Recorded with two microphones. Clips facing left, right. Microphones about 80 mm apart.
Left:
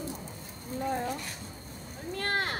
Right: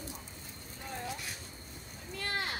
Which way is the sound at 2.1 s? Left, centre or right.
Left.